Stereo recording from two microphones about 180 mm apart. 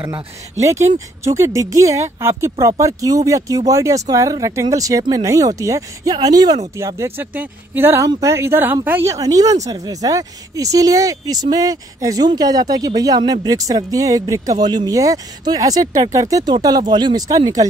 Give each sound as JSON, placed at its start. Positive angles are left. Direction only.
{"t": 0.0, "sound": "speech", "side_deg": -15}